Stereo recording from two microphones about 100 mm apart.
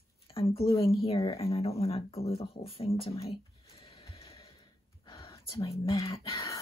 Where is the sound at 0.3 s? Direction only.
70° left (ahead or behind).